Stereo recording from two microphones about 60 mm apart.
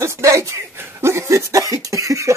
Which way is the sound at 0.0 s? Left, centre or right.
Right.